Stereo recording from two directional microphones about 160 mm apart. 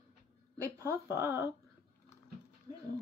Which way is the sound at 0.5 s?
15° right (ahead or behind).